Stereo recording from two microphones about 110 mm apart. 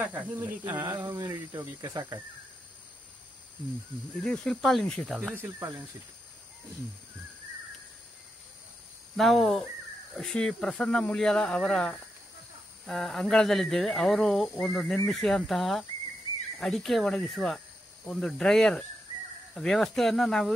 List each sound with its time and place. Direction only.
0.0 s speech: 15° right (ahead or behind)
0.9 s speech: 35° right (ahead or behind)
4.2 s speech: 5° left (ahead or behind)
5.3 s speech: 20° right (ahead or behind)
9.1 s speech: centre (ahead or behind)